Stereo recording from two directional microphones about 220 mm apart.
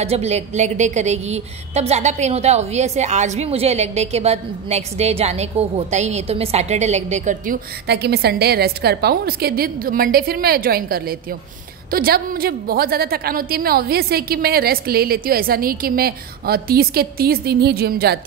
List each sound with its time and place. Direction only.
0.0 s a woman's voice: 30° right (ahead or behind)
7.8 s a woman's voice: 50° right (ahead or behind)